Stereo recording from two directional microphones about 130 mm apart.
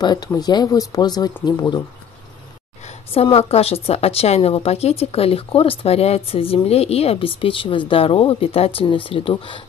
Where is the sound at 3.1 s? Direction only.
50° left (ahead or behind).